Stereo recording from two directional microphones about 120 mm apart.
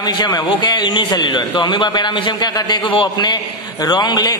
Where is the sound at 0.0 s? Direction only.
35° left (ahead or behind).